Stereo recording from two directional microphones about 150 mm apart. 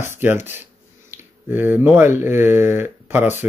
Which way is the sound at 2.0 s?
15° right (ahead or behind).